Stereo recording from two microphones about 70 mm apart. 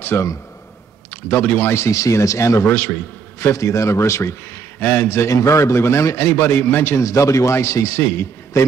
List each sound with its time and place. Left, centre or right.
0.0 s a man's voice: left
1.3 s a man's voice: left
3.5 s a man's voice: left
4.7 s a man's voice: left
5.0 s a man's voice: left
7.1 s a man's voice: left